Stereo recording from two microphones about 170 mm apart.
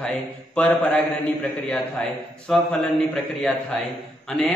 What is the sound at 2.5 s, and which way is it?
A man's voice, 5° left (ahead or behind).